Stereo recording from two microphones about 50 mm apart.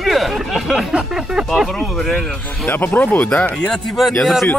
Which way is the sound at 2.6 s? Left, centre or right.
Left.